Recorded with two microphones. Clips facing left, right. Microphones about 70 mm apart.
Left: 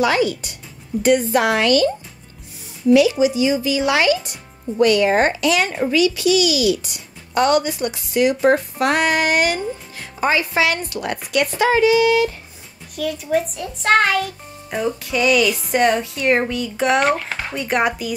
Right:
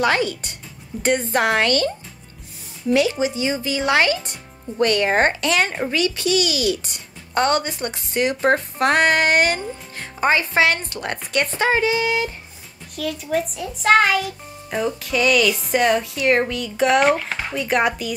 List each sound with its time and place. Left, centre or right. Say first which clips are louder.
0.0 s a child's voice: left 2 dB; right
2.9 s a child's voice: left 5 dB; right
12.9 s a child's voice: left 3 dB; centre